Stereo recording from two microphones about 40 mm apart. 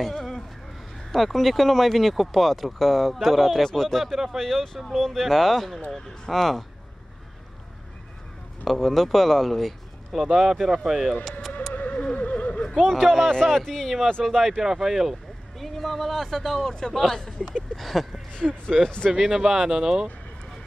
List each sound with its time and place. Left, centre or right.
0.0 s speech: centre
4.4 s speech: centre
5.9 s speech: centre
8.6 s speech: centre
11.7 s neigh: left
12.7 s speech: centre
14.2 s speech: centre
18.4 s speech: centre